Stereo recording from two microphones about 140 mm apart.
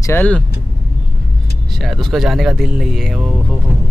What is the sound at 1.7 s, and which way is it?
Speech, centre (ahead or behind).